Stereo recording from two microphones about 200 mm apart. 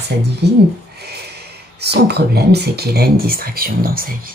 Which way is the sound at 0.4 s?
55° right (ahead or behind).